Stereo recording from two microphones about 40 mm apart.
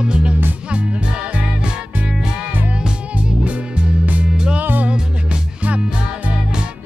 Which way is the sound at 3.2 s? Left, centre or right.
Right.